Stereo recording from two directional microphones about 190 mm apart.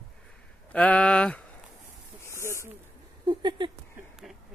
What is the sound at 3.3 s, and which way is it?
Speech, 25° right (ahead or behind).